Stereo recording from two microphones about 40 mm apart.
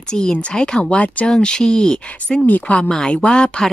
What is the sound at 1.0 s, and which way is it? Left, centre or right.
Speech, left.